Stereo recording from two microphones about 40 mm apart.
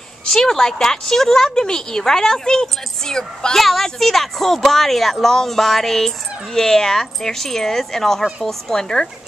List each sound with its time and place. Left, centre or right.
0.3 s speech: centre
3.5 s speech: centre
8.8 s speech: centre